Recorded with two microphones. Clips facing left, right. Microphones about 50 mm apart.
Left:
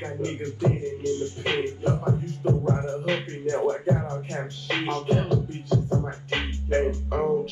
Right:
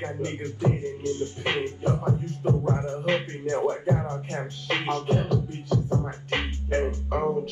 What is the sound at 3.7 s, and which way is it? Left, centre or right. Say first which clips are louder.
Music: left 1 dB; right.